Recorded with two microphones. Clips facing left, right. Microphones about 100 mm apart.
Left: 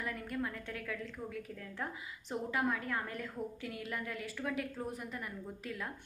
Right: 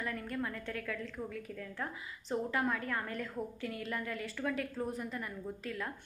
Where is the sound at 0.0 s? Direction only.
10° left (ahead or behind).